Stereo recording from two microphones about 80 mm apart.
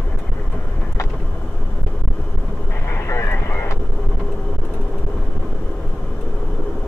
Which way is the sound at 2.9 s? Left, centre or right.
Left.